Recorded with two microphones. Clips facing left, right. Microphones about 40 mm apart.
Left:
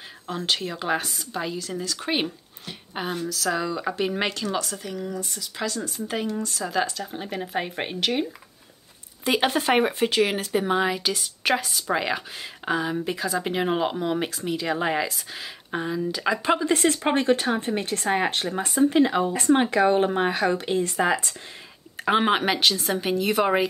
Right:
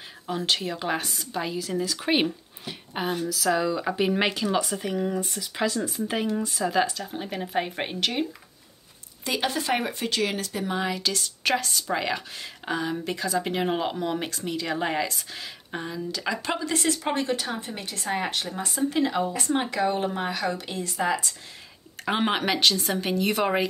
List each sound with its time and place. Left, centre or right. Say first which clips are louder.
0.3 s speech: even; centre
9.2 s speech: left 5 dB; left
10.8 s a woman's voice: left 3 dB; centre
16.7 s a woman's voice: left 4 dB; left
18.8 s speech: left 5 dB; left
19.3 s a woman's voice: left 6 dB; left
22.0 s speech: left 4 dB; centre